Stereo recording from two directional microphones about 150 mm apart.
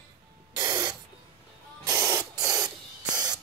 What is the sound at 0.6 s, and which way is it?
Spray, 30° right (ahead or behind).